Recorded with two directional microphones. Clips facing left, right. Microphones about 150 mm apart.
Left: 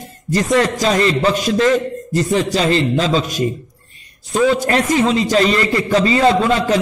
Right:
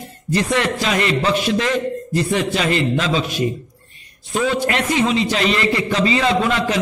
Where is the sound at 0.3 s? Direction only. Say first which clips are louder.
Left 3 dB; 40° left (ahead or behind).